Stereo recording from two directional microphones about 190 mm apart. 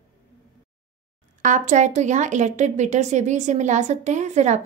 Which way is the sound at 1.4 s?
40° right (ahead or behind).